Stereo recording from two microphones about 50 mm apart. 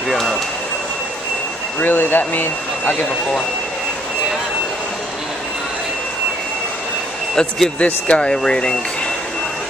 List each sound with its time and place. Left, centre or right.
0.1 s a sound: centre
1.8 s speech: left
7.3 s speech: centre